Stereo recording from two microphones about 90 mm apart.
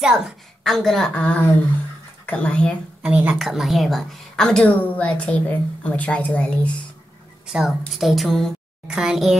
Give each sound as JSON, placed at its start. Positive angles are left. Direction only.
{"t": 0.0, "sound": "a child's voice", "side_deg": -5}
{"t": 3.0, "sound": "a woman's voice", "side_deg": -15}
{"t": 3.3, "sound": "a woman's voice", "side_deg": 0}
{"t": 7.5, "sound": "a woman's voice", "side_deg": 0}
{"t": 8.8, "sound": "a child's voice", "side_deg": -10}